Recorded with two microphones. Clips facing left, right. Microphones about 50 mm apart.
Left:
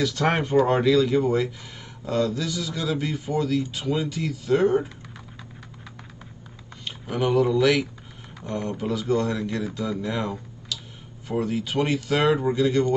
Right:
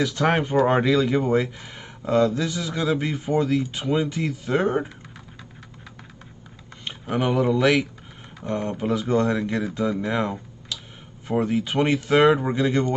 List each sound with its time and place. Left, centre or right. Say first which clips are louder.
0.0 s speech: right 2 dB; centre
0.7 s speech: even; right
6.8 s speech: right 1 dB; right